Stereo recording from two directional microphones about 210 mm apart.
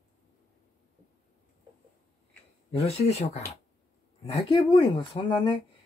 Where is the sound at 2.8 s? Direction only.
30° left (ahead or behind).